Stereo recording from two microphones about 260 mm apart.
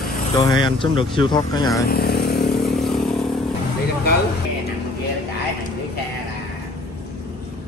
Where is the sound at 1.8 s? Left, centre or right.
Left.